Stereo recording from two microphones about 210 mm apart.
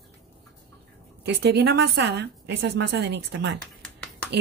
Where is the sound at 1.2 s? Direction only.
55° right (ahead or behind).